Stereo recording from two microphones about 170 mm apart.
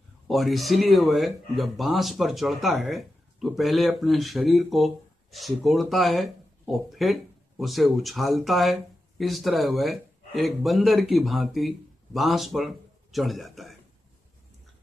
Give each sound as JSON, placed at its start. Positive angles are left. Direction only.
{"t": 0.3, "sound": "speech", "side_deg": 0}